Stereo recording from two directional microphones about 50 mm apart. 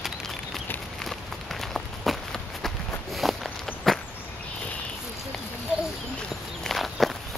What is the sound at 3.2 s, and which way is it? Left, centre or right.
Walk, centre.